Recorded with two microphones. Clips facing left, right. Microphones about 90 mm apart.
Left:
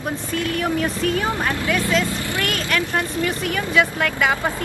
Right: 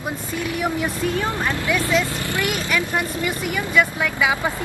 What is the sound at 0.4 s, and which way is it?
A woman's voice, 15° right (ahead or behind).